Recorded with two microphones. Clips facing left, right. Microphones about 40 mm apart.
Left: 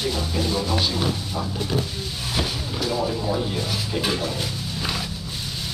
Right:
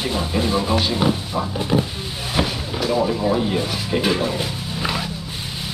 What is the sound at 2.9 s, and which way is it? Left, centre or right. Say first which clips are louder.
Speech: right 6 dB; right.